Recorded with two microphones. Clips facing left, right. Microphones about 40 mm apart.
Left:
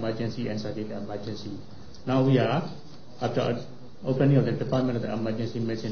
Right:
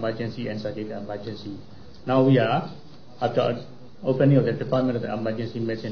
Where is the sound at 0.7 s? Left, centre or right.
Centre.